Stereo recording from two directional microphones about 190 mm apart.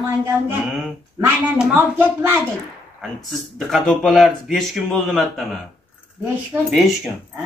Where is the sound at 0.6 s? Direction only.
5° right (ahead or behind).